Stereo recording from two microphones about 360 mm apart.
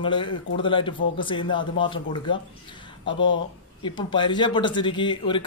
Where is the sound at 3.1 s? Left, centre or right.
Left.